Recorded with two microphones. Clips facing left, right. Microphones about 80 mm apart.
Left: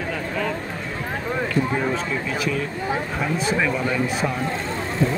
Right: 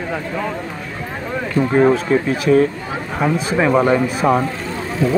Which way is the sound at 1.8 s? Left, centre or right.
Right.